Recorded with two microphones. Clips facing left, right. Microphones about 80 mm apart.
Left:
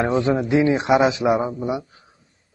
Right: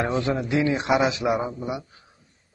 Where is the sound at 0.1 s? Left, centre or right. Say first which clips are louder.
Left 5 dB; left.